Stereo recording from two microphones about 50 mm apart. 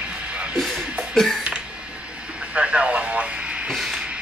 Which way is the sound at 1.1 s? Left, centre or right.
Centre.